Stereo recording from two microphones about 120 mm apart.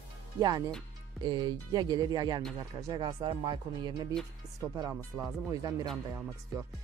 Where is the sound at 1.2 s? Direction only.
40° right (ahead or behind).